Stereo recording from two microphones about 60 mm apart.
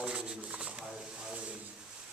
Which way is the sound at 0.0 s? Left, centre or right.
Centre.